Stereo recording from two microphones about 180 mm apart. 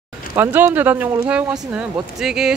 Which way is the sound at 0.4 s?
10° right (ahead or behind).